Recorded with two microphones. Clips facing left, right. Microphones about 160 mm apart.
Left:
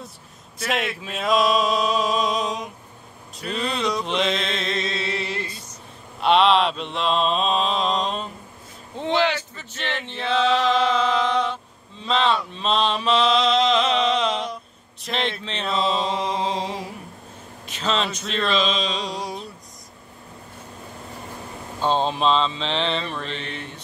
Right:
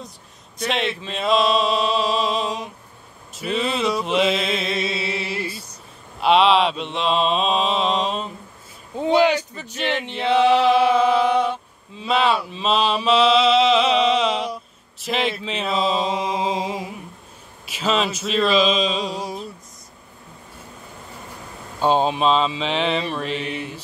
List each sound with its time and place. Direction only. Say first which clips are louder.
0.6 s a sound: right 2 dB; 5° left (ahead or behind)
3.3 s mantra: right 4 dB; 5° right (ahead or behind)
8.9 s a sound: right 5 dB; 10° right (ahead or behind)
12.0 s mantra: right 2 dB; 10° right (ahead or behind)
17.6 s speech: right 3 dB; 10° right (ahead or behind)
21.8 s mantra: right 3 dB; 10° right (ahead or behind)